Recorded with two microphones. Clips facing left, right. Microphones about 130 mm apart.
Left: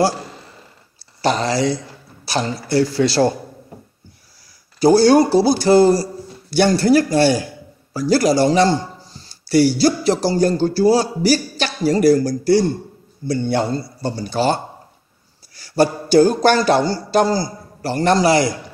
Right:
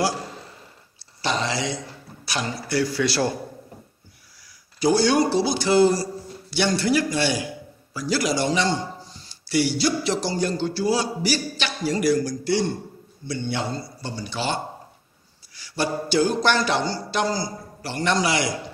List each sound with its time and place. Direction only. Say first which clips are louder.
1.2 s a man's voice: left 7 dB; 40° left (ahead or behind)
4.7 s a man's voice: left 8 dB; 35° left (ahead or behind)
15.5 s a sound: left 9 dB; 40° left (ahead or behind)